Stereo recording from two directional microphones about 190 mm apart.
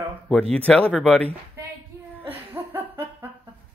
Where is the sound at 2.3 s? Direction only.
10° right (ahead or behind).